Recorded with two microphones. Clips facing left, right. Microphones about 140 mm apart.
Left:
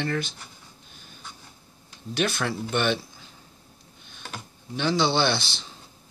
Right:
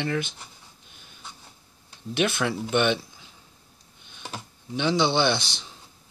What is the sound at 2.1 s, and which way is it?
Speech, 20° right (ahead or behind).